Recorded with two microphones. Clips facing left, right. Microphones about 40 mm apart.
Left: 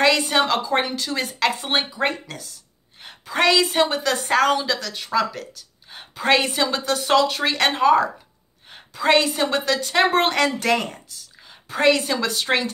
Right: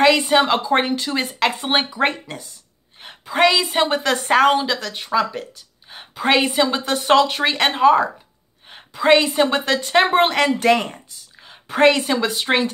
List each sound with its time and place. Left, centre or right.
0.0 s speech: centre
0.7 s speech: right
1.8 s speech: right
3.3 s speech: centre
3.8 s speech: right; by 6.8 s centre
6.8 s speech: right
7.5 s a woman's voice: centre